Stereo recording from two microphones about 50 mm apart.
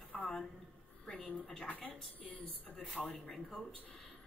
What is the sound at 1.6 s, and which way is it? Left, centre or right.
Speech, left.